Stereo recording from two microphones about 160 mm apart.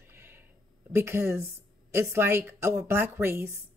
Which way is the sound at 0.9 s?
15° right (ahead or behind).